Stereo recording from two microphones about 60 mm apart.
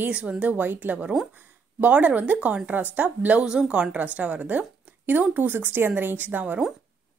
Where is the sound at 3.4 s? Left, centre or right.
Centre.